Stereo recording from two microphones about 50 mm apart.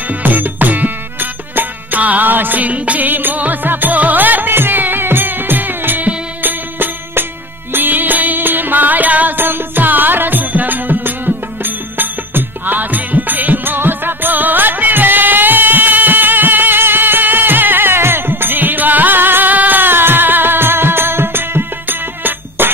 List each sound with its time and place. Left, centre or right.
0.1 s music: right
3.1 s music: right